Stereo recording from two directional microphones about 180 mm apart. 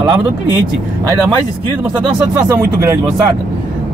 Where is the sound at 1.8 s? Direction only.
15° right (ahead or behind).